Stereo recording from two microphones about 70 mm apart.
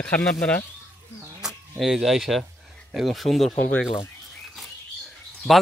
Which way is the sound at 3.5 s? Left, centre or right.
Centre.